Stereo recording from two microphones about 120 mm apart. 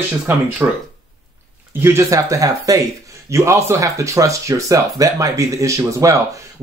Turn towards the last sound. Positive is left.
turn(degrees=-25)  # may be behind; listen again after turning